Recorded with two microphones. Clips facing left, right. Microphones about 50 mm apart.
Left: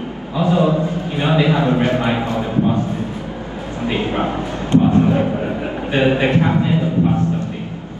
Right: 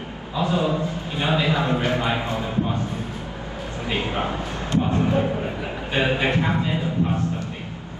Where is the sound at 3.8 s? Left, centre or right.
Left.